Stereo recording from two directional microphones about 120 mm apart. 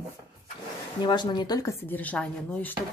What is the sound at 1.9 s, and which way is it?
Speech, 10° left (ahead or behind).